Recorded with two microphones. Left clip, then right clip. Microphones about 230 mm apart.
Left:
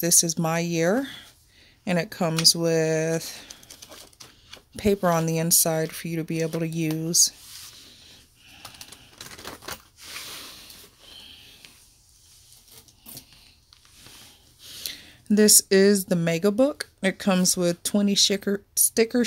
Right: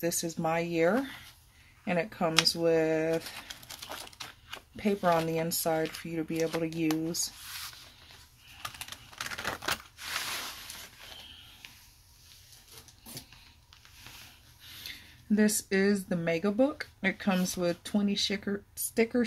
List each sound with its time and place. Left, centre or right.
0.0 s speech: left
4.7 s speech: left
14.8 s speech: left